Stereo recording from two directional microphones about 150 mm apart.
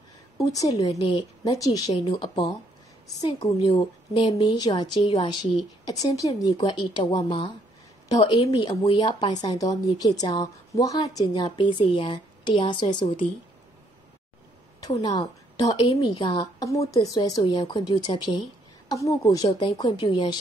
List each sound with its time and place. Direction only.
0.4 s a woman's voice: 25° left (ahead or behind)
15.0 s a woman's voice: 25° left (ahead or behind)